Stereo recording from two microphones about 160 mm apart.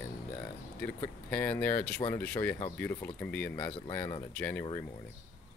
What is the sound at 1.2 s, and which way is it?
Speech, 10° left (ahead or behind).